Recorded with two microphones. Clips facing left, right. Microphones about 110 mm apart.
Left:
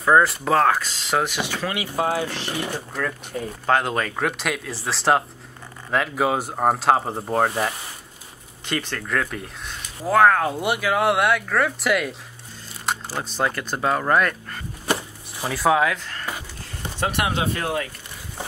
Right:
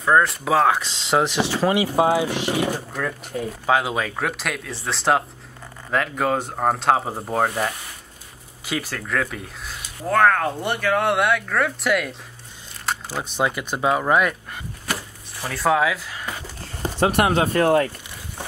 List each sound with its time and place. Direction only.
0.0 s speech: 5° left (ahead or behind)
0.7 s speech: 25° right (ahead or behind)
2.7 s speech: 5° right (ahead or behind)
12.9 s a sound: centre (ahead or behind)
13.2 s speech: 15° right (ahead or behind)
17.0 s speech: 40° right (ahead or behind)